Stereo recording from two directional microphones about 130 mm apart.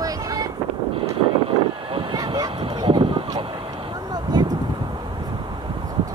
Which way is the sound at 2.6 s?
45° right (ahead or behind).